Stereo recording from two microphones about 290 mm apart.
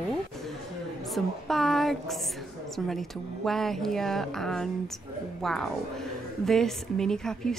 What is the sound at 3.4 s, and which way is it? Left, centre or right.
A woman's voice, centre.